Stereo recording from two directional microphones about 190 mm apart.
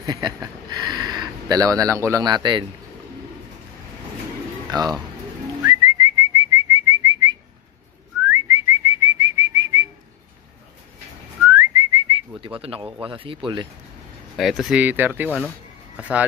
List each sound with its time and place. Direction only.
0.0 s speech: 20° right (ahead or behind)
4.6 s speech: 20° right (ahead or behind)
5.6 s whistling: 20° right (ahead or behind)
11.5 s whistling: 20° right (ahead or behind)
12.4 s speech: 30° right (ahead or behind)
14.3 s speech: centre (ahead or behind)
15.2 s speech: 5° left (ahead or behind)
16.0 s speech: 5° right (ahead or behind)